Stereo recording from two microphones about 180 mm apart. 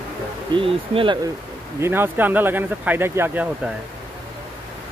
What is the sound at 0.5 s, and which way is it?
Speech, 30° right (ahead or behind).